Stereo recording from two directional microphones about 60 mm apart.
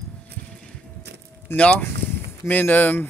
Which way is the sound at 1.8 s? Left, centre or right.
Left.